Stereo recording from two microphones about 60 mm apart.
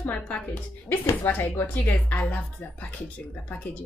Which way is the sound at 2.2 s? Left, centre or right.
Left.